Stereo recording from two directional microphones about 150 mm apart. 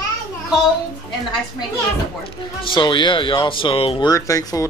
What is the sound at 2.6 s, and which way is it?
Speech, 35° left (ahead or behind).